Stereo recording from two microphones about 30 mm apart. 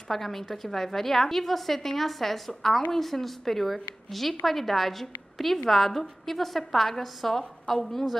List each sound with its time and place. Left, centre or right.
0.1 s a woman's voice: centre